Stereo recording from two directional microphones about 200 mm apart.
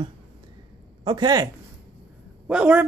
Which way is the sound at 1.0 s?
20° right (ahead or behind).